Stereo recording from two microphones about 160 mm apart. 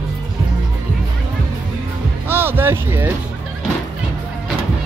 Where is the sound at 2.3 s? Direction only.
15° right (ahead or behind).